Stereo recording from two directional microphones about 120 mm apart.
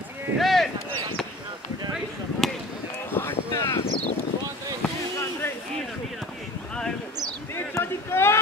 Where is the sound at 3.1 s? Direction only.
20° left (ahead or behind).